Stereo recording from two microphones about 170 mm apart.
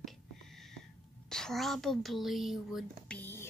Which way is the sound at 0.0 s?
Centre (ahead or behind).